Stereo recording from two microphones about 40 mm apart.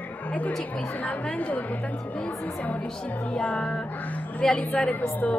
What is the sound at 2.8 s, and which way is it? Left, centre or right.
A woman's voice, left.